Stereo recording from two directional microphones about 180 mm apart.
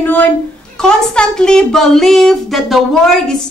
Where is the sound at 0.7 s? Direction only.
5° left (ahead or behind).